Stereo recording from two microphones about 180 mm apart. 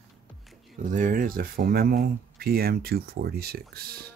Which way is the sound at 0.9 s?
50° right (ahead or behind).